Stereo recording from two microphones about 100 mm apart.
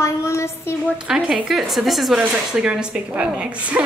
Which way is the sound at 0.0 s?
30° left (ahead or behind).